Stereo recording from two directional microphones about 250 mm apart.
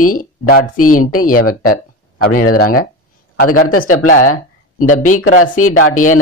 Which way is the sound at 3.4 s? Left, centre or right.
Left.